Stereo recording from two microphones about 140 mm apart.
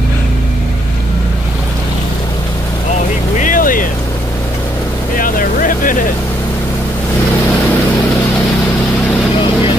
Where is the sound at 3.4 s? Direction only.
75° left (ahead or behind).